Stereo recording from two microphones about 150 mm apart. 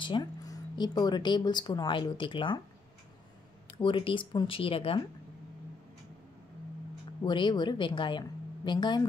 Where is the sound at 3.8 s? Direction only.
35° left (ahead or behind).